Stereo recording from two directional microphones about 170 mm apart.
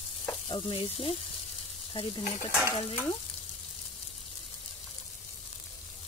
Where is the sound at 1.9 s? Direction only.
30° left (ahead or behind).